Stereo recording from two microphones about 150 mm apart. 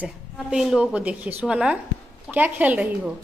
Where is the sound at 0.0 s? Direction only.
5° right (ahead or behind).